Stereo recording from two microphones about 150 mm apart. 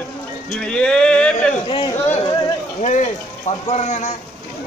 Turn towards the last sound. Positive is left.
turn(degrees=50)  # may be behind; listen again after turning